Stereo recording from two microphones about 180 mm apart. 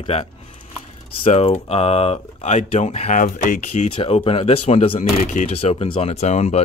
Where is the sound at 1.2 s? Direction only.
35° left (ahead or behind).